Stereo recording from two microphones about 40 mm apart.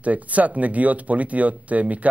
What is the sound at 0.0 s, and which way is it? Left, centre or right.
Speech, right.